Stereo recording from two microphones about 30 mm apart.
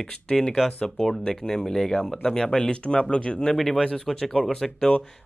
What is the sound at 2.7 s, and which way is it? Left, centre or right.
Speech, left.